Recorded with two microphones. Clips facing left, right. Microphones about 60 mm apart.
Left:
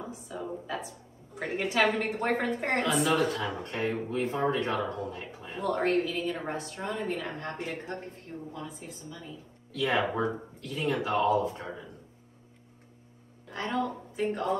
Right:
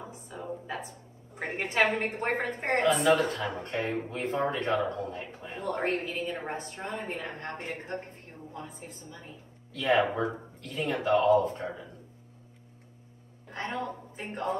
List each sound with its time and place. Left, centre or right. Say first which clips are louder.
0.3 s a woman's voice: left 1 dB; right
13.5 s a woman's voice: left 3 dB; right